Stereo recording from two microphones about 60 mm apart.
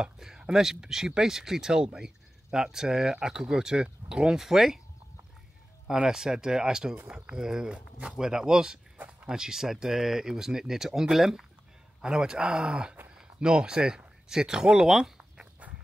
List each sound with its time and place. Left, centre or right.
0.0 s speech: centre
6.0 s speech: centre
8.9 s a sound: right
9.3 s speech: centre